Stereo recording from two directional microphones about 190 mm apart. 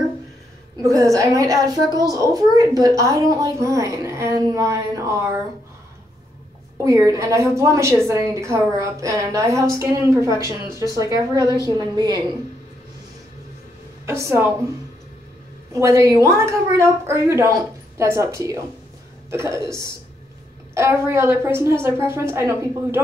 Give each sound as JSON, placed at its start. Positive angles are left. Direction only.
{"t": 0.8, "sound": "a woman's voice", "side_deg": -15}
{"t": 6.8, "sound": "a woman's voice", "side_deg": -15}
{"t": 14.0, "sound": "a woman's voice", "side_deg": -15}
{"t": 15.7, "sound": "a woman's voice", "side_deg": -15}
{"t": 20.7, "sound": "a woman's voice", "side_deg": -15}